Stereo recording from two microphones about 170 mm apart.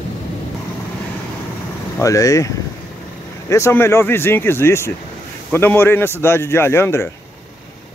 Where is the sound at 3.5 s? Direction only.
15° left (ahead or behind).